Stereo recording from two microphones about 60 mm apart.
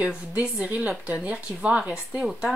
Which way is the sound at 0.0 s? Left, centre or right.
Right.